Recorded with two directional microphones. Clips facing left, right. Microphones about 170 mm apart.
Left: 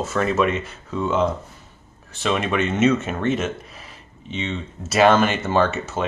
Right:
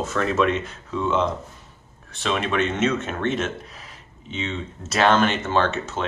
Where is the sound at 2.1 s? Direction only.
5° left (ahead or behind).